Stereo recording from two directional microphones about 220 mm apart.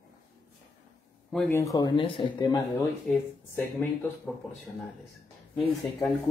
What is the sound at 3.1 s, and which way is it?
Speech, 5° left (ahead or behind).